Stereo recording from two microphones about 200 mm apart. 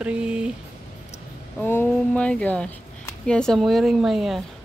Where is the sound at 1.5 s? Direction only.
10° left (ahead or behind).